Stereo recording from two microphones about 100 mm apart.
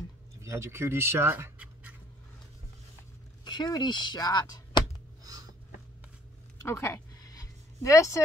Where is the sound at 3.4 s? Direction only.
45° left (ahead or behind).